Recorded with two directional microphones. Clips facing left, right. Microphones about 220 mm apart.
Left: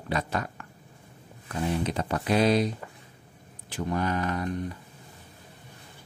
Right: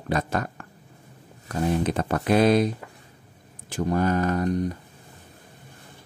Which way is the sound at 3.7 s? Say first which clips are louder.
Right 5 dB; 45° right (ahead or behind).